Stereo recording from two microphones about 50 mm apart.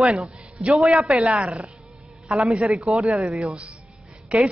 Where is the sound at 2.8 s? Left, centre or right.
Centre.